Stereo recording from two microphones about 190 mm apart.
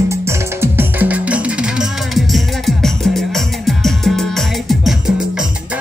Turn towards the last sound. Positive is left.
turn(degrees=0)  # may be behind; listen again after turning